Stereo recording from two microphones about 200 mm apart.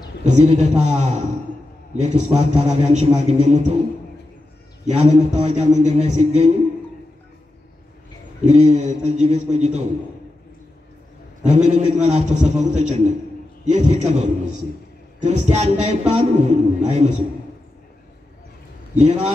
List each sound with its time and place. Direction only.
0.2 s a man's voice: 35° right (ahead or behind)
4.8 s a man's voice: 35° right (ahead or behind)
8.5 s a man's voice: 35° right (ahead or behind)
11.4 s a man's voice: 35° right (ahead or behind)
18.9 s a man's voice: 35° right (ahead or behind)